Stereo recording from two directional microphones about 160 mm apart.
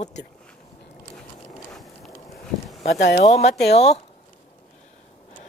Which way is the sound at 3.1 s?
40° left (ahead or behind).